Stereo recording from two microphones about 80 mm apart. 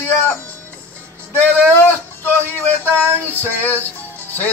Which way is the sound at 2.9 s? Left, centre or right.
Left.